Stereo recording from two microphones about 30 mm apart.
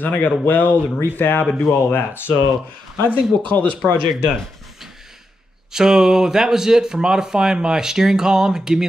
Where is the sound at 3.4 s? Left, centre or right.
Left.